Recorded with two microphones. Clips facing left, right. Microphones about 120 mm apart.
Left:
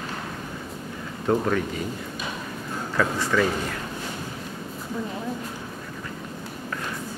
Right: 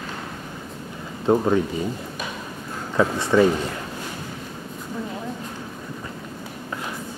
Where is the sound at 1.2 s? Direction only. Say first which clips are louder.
Right 4 dB; 20° right (ahead or behind).